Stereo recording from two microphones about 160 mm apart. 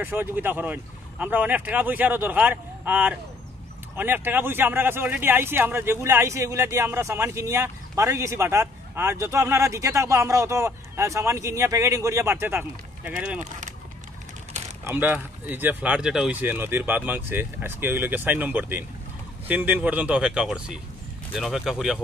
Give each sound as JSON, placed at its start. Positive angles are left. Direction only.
{"t": 0.0, "sound": "speech", "side_deg": -10}
{"t": 13.4, "sound": "speech", "side_deg": -50}
{"t": 14.9, "sound": "speech", "side_deg": -10}